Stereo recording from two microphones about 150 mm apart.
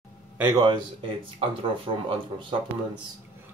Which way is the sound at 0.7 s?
35° right (ahead or behind).